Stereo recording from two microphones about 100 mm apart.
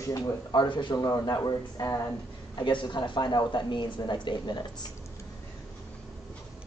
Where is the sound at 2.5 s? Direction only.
50° left (ahead or behind).